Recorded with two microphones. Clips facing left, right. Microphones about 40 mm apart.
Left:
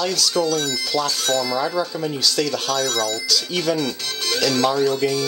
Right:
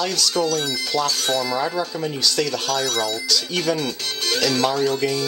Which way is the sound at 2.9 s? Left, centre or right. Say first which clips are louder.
Left 1 dB; centre.